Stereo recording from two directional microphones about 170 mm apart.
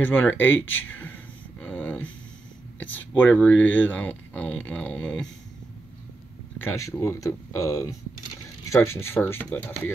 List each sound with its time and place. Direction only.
0.0 s speech: 10° left (ahead or behind)
0.7 s a sound: 10° left (ahead or behind)
2.8 s speech: 10° left (ahead or behind)
6.6 s speech: 15° left (ahead or behind)